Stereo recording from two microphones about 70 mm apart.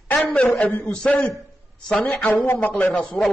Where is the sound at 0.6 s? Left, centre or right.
Centre.